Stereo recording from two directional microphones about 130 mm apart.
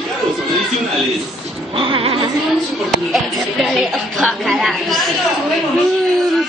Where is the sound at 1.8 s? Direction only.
45° right (ahead or behind).